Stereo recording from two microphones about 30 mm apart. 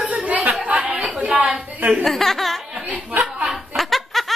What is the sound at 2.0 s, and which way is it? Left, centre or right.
Speech, centre.